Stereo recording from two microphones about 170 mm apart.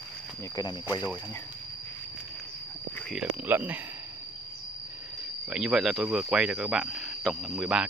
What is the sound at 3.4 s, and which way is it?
Speech, 10° right (ahead or behind).